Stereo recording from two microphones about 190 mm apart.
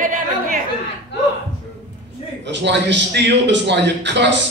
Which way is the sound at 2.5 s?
65° right (ahead or behind).